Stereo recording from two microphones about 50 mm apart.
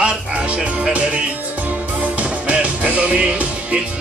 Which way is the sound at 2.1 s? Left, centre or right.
Right.